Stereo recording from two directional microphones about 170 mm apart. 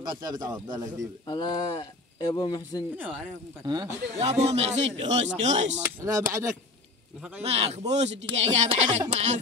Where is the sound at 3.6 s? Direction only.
25° right (ahead or behind).